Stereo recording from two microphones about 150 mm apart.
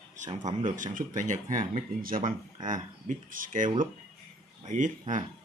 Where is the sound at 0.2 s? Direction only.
55° right (ahead or behind).